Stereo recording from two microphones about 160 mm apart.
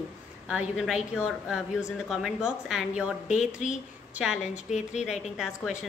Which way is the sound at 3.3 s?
50° left (ahead or behind).